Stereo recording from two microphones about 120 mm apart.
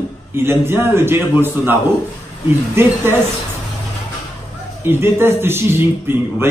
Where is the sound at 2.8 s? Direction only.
20° right (ahead or behind).